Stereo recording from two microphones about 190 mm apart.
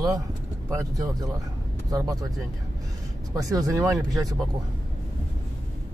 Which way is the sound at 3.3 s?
15° right (ahead or behind).